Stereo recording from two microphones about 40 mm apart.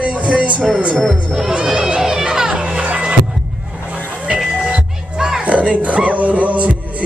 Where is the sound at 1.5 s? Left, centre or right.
Right.